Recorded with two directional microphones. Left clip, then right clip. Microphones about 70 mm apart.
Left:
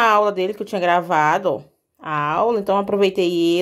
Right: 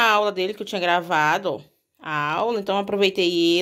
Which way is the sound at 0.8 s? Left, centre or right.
Centre.